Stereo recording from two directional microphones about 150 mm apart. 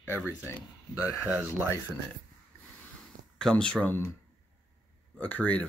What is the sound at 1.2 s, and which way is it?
Speech, 15° right (ahead or behind).